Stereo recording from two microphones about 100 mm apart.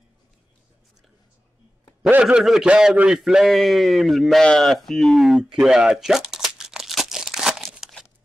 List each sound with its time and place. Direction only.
2.2 s a man's voice: 5° right (ahead or behind)
5.6 s crumpling: 5° right (ahead or behind)